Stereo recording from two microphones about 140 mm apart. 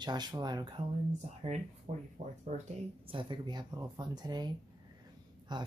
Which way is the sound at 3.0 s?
35° right (ahead or behind).